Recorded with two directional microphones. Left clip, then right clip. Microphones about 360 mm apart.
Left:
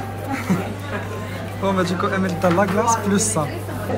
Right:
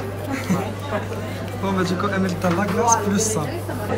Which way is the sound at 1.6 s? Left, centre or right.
Centre.